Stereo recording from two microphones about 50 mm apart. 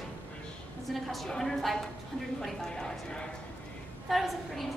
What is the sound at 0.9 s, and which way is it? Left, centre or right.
A woman's voice, centre.